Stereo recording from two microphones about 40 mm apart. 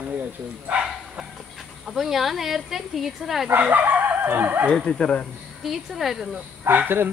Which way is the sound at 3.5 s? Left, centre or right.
Right.